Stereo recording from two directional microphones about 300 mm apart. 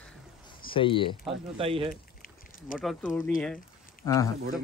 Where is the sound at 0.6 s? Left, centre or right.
Centre.